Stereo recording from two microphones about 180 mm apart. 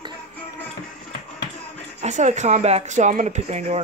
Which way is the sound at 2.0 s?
40° right (ahead or behind).